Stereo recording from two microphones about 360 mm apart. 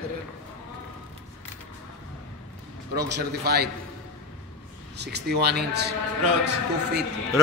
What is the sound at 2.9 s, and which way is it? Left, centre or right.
Speech, right.